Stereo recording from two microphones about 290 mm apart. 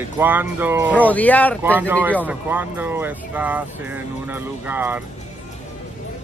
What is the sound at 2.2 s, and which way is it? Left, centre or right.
Speech, centre.